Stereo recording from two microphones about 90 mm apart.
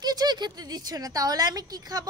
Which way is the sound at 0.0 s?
50° right (ahead or behind).